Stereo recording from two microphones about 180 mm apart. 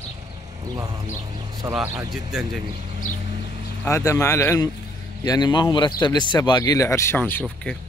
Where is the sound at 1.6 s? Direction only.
20° right (ahead or behind).